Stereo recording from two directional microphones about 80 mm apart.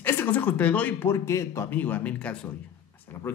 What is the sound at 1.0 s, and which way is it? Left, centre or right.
Speech, left.